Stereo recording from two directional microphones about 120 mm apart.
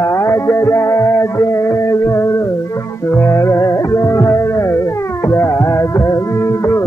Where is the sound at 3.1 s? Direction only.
20° left (ahead or behind).